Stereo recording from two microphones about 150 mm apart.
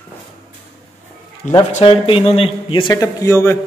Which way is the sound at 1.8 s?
35° left (ahead or behind).